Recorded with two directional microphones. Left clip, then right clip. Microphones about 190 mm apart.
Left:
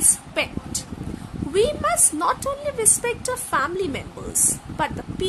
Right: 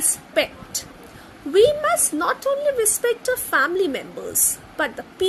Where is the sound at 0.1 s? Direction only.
15° right (ahead or behind).